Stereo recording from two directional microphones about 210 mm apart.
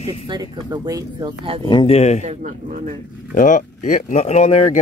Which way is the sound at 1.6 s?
20° left (ahead or behind).